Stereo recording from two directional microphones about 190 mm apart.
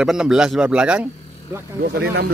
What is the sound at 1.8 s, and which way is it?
Speech, 55° right (ahead or behind).